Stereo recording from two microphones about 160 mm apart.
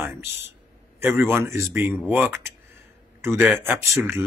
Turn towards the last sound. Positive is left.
turn(degrees=-15)  # may be behind; listen again after turning